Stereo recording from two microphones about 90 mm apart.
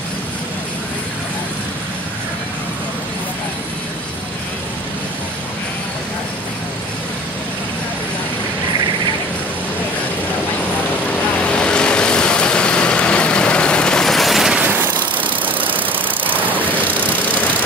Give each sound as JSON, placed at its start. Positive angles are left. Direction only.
{"t": 11.5, "sound": "vehicle", "side_deg": 10}
{"t": 14.7, "sound": "vehicle", "side_deg": -20}